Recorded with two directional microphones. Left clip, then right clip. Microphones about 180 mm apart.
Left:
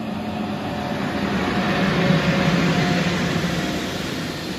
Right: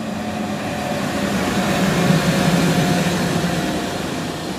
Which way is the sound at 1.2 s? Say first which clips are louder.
Right 1 dB; 45° right (ahead or behind).